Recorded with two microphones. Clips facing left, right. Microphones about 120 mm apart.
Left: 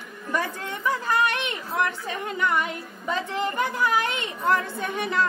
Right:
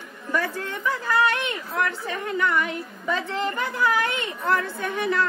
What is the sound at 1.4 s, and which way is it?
A woman's voice, 20° left (ahead or behind).